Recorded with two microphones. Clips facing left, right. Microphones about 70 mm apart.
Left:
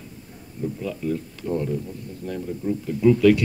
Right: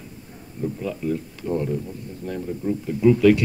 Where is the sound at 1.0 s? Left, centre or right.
Centre.